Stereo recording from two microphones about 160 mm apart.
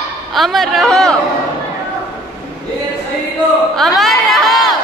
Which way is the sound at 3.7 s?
Centre (ahead or behind).